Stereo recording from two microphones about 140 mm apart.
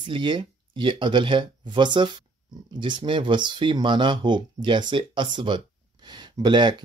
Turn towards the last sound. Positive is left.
turn(degrees=-35)  # may be behind; listen again after turning